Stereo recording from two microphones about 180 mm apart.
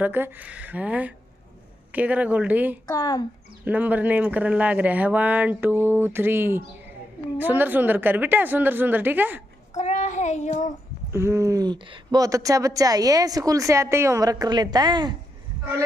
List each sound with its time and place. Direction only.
0.0 s speech: 10° right (ahead or behind)
2.9 s speech: 20° left (ahead or behind)
3.6 s speech: 10° right (ahead or behind)
9.8 s child singing: 40° left (ahead or behind)
11.1 s speech: 15° right (ahead or behind)